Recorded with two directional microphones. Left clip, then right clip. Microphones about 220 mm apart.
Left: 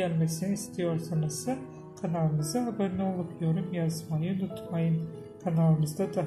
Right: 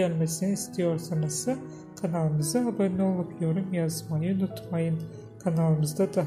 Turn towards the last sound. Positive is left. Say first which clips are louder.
# right 4 dB
turn(degrees=-25)  # may be behind; listen again after turning